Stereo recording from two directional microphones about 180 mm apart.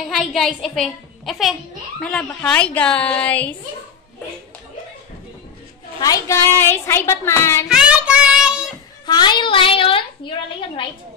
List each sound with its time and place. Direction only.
0.1 s a woman's voice: centre (ahead or behind)
5.9 s a woman's voice: 20° left (ahead or behind)
7.6 s child singing: 5° right (ahead or behind)
9.0 s a woman's voice: 25° left (ahead or behind)